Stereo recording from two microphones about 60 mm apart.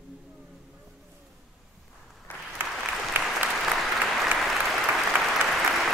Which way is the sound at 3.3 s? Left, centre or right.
Centre.